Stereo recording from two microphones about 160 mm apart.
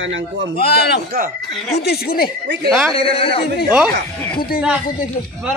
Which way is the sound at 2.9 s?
35° left (ahead or behind).